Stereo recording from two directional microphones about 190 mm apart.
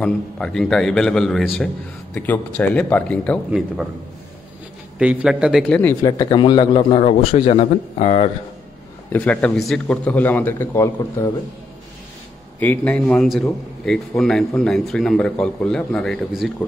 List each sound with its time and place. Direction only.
0.0 s a man's voice: 5° left (ahead or behind)
4.9 s a man's voice: 5° right (ahead or behind); by 8.3 s 35° left (ahead or behind)
9.1 s a man's voice: 10° left (ahead or behind)
12.5 s a man's voice: 10° left (ahead or behind)